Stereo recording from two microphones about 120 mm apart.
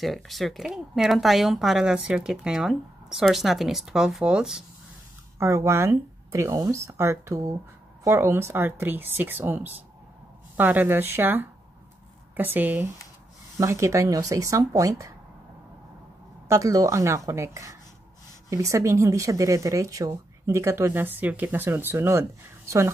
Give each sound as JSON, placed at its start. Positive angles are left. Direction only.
{"t": 0.0, "sound": "speech", "side_deg": 0}
{"t": 5.4, "sound": "speech", "side_deg": -25}
{"t": 13.6, "sound": "speech", "side_deg": -25}
{"t": 16.4, "sound": "speech", "side_deg": -25}